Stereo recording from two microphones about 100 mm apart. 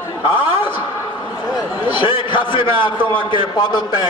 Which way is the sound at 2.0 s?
55° left (ahead or behind).